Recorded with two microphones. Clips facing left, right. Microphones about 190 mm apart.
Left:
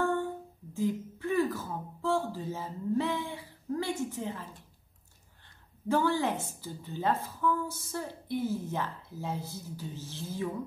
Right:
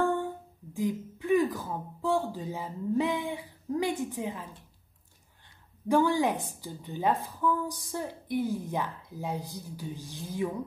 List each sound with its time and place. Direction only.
0.0 s music: 15° right (ahead or behind)
0.7 s speech: 15° right (ahead or behind)
5.9 s a woman's voice: 15° right (ahead or behind)